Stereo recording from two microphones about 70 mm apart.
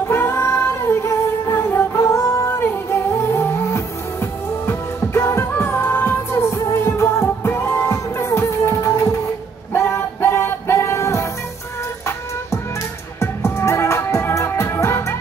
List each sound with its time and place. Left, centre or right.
0.1 s music: left
13.2 s music: left